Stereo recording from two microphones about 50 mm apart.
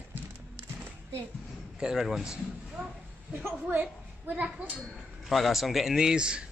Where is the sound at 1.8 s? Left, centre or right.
Centre.